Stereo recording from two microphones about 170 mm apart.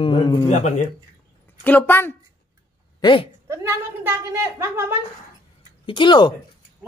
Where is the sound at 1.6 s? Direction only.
10° left (ahead or behind).